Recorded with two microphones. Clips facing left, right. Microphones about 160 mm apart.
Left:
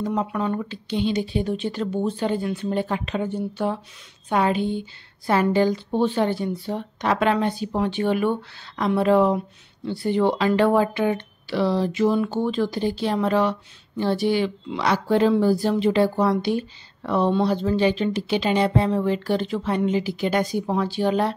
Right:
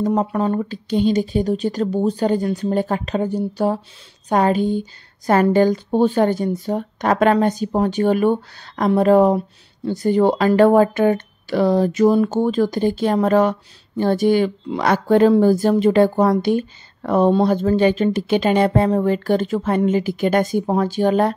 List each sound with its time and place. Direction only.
0.0 s speech: 40° right (ahead or behind)